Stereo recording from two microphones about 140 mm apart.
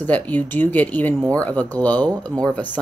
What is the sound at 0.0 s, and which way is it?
Speech, 10° left (ahead or behind).